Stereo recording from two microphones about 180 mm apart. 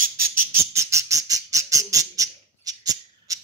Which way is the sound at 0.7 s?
15° right (ahead or behind).